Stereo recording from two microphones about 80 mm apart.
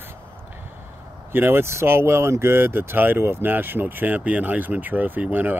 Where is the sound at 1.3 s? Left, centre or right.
Right.